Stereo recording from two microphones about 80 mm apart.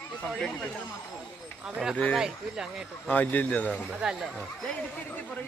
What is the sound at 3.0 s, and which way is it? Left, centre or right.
Speech, left.